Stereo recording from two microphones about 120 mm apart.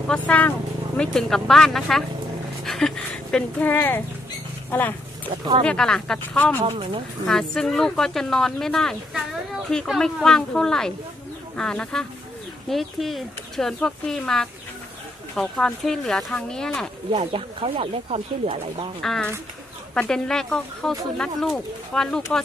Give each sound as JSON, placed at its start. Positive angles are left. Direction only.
{"t": 0.1, "sound": "speech", "side_deg": 10}
{"t": 6.6, "sound": "speech", "side_deg": -50}
{"t": 7.2, "sound": "speech", "side_deg": 5}
{"t": 17.1, "sound": "speech", "side_deg": -50}
{"t": 18.9, "sound": "speech", "side_deg": 5}